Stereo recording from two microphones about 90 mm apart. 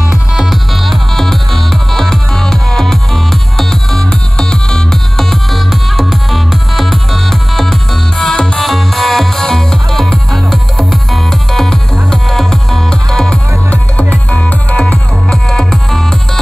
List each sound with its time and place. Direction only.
0.3 s music: centre (ahead or behind)